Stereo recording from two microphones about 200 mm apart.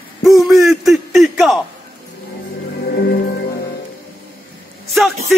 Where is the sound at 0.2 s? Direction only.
Centre (ahead or behind).